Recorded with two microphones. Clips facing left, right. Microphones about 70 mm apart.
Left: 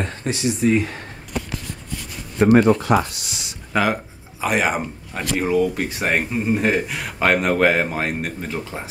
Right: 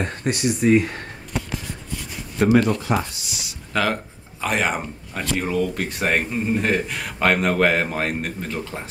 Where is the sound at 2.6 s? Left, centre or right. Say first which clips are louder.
Left 6 dB; left.